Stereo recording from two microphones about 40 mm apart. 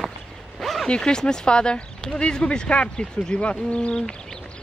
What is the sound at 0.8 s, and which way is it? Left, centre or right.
Speech, left.